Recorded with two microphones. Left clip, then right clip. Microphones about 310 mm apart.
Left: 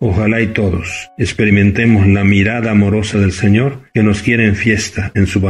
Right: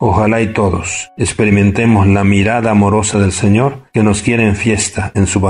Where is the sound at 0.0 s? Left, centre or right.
Right.